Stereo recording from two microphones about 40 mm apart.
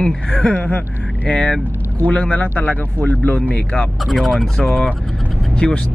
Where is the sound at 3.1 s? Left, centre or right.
Left.